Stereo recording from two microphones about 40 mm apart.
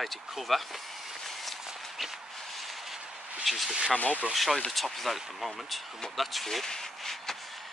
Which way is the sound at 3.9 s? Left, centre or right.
Left.